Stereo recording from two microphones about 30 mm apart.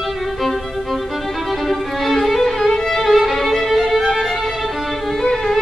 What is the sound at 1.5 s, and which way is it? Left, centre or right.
Violin, centre.